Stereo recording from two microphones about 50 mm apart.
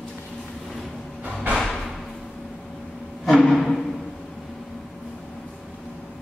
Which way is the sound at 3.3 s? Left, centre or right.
Centre.